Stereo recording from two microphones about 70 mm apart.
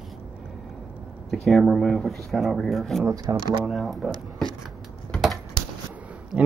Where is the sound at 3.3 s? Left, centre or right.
Right.